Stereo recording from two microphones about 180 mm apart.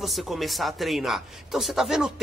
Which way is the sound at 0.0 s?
Centre (ahead or behind).